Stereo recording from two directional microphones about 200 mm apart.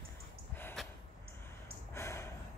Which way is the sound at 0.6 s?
Centre (ahead or behind).